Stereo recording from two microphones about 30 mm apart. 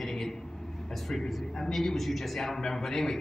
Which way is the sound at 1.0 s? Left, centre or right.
Centre.